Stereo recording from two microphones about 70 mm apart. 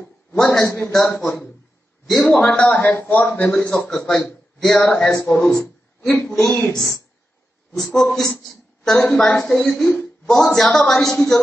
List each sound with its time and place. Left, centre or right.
0.4 s a sound: centre
0.7 s a man's voice: left
1.1 s a man's voice: centre
2.3 s a man's voice: centre
5.4 s a sound: centre
6.2 s a man's voice: centre
7.7 s a man's voice: centre